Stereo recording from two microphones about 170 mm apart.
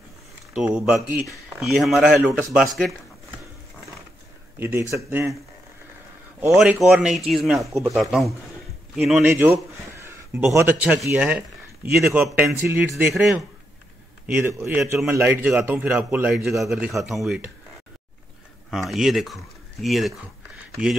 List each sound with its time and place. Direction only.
0.6 s speech: 10° right (ahead or behind)
4.6 s speech: 10° right (ahead or behind)
6.5 s speech: 5° right (ahead or behind)
14.2 s speech: 10° right (ahead or behind)
18.7 s speech: centre (ahead or behind)